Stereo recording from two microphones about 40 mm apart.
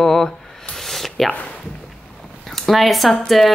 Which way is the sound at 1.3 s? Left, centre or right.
Left.